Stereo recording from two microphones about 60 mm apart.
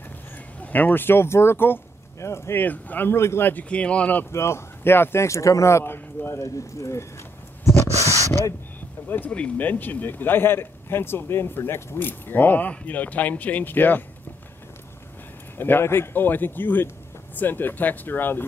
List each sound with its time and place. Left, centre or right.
0.6 s speech: left
2.6 s speech: left
3.2 s speech: left
3.6 s speech: centre
4.3 s speech: left
7.6 s a sound: left
9.3 s speech: centre
9.7 s speech: left
15.5 s speech: left